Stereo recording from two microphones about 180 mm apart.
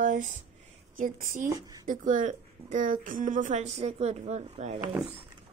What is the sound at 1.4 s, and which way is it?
Speech, 20° right (ahead or behind).